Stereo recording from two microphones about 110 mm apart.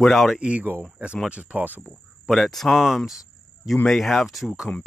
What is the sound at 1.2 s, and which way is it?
Speech, 10° right (ahead or behind).